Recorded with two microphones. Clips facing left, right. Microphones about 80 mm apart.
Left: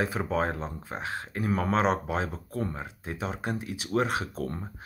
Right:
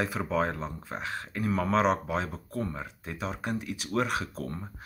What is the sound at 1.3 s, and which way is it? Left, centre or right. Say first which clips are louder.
Speech: left 1 dB; left.